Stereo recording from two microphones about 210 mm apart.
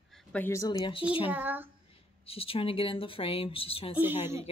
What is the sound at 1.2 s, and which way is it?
Speech, 10° right (ahead or behind).